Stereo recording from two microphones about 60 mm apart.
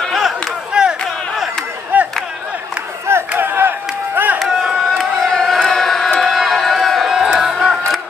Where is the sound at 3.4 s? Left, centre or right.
Right.